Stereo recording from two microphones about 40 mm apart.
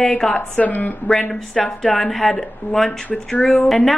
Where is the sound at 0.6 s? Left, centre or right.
Left.